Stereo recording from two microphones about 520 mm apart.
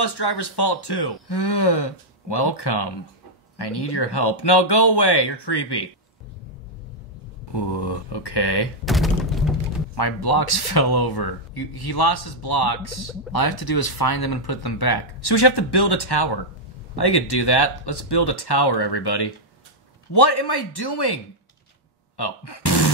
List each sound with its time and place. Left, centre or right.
0.0 s speech: left
7.5 s speech: left
8.8 s thunk: centre
9.9 s speech: left